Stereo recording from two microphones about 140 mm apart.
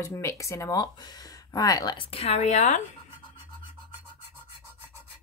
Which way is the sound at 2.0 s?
45° left (ahead or behind).